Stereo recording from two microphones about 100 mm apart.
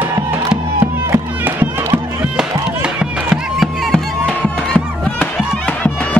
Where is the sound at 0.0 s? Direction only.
20° right (ahead or behind).